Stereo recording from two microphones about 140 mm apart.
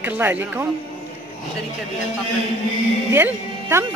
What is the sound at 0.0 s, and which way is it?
Speech, 15° right (ahead or behind).